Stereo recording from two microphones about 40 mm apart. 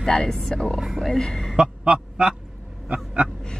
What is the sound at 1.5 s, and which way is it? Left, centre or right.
Honk, right.